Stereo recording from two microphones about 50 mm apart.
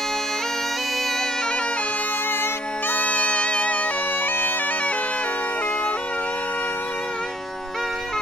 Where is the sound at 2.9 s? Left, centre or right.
Left.